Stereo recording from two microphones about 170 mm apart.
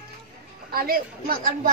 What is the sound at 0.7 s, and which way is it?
A man's voice, 60° right (ahead or behind).